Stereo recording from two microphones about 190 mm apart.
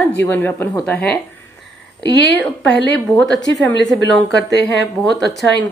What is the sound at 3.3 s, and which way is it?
A woman's voice, 70° left (ahead or behind).